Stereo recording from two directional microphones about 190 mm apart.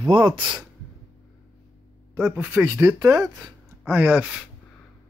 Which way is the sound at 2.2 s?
10° right (ahead or behind).